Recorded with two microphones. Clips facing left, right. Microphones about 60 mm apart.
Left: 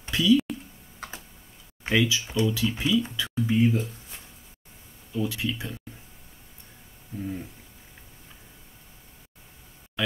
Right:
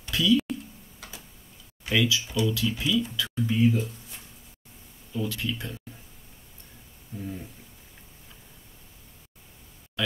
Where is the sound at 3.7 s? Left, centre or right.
Left.